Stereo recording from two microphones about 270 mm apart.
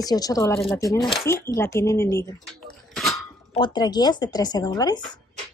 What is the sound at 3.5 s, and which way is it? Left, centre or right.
Child singing, centre.